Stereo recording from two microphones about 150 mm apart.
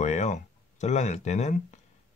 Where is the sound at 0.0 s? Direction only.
50° left (ahead or behind).